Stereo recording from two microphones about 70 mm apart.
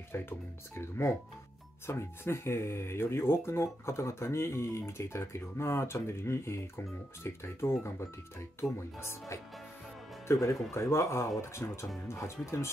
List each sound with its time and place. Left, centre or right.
0.1 s speech: left
10.2 s speech: left